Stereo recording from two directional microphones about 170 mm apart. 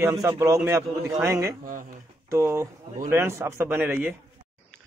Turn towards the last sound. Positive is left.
turn(degrees=-10)  # may be behind; listen again after turning